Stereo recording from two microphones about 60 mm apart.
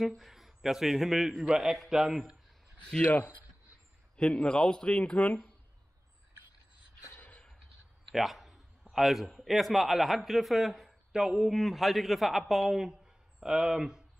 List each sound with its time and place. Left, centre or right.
0.0 s a man's voice: centre
2.8 s a man's voice: centre
4.3 s a man's voice: centre
7.2 s a sound: left
8.1 s a sound: centre
8.9 s a man's voice: centre